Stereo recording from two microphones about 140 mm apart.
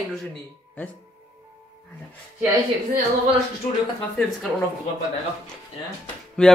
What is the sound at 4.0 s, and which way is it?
Speech, 5° left (ahead or behind).